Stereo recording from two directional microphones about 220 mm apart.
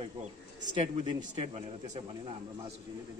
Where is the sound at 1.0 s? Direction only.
25° right (ahead or behind).